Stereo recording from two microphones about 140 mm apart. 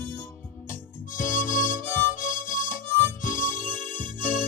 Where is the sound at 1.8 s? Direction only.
15° left (ahead or behind).